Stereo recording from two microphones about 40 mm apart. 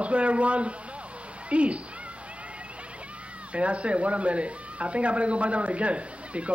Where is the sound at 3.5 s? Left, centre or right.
Right.